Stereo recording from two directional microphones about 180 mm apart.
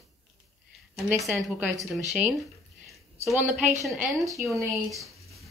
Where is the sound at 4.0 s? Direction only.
Centre (ahead or behind).